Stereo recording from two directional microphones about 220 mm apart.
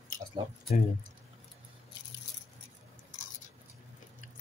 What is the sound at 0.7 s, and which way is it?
Speech, 35° left (ahead or behind).